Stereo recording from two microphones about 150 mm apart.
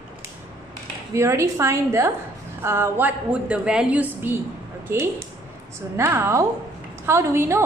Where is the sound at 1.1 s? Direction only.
20° right (ahead or behind).